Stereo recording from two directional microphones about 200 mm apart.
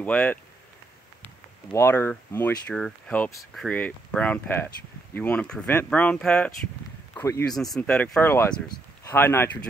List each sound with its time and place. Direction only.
0.0 s speech: 5° left (ahead or behind)
8.6 s a sound: 20° left (ahead or behind)
9.1 s speech: 10° left (ahead or behind)